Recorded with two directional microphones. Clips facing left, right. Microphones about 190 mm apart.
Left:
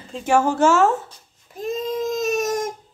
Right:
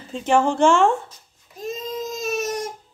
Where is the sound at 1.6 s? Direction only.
55° left (ahead or behind).